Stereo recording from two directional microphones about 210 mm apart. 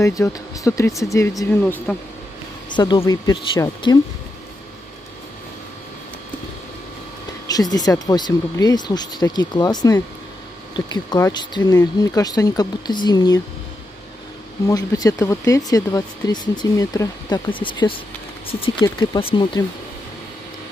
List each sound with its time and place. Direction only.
0.0 s speech: 15° left (ahead or behind)
2.7 s speech: 20° left (ahead or behind)
7.4 s speech: 20° left (ahead or behind)
14.7 s speech: 15° left (ahead or behind)